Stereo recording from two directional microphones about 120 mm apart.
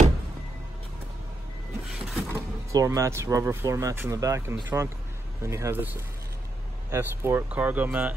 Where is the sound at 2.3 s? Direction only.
25° right (ahead or behind).